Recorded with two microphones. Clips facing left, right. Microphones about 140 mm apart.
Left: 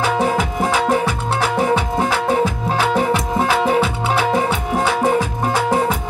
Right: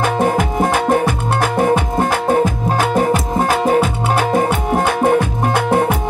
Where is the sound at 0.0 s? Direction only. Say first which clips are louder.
Right 2 dB; 50° right (ahead or behind).